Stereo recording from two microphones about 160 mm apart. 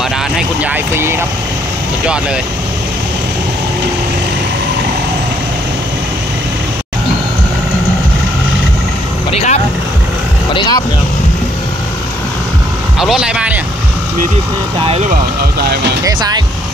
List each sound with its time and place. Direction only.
0.7 s speech: 15° right (ahead or behind)
9.3 s speech: 45° left (ahead or behind)
10.5 s speech: 30° left (ahead or behind)
13.0 s speech: 5° right (ahead or behind)